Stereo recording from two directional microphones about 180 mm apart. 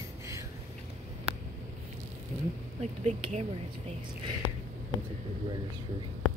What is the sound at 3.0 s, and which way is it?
Speech, 35° right (ahead or behind).